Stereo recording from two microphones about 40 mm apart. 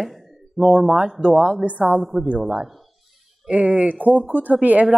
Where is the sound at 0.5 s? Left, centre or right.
Centre.